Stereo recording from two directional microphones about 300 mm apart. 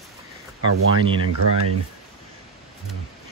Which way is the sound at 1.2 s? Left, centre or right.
Right.